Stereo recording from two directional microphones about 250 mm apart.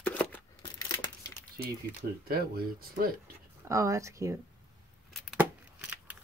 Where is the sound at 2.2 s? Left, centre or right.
Right.